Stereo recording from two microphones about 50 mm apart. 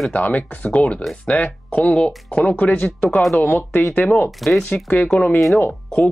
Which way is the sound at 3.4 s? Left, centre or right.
Left.